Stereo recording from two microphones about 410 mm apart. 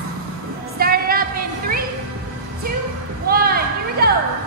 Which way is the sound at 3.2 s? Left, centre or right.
Right.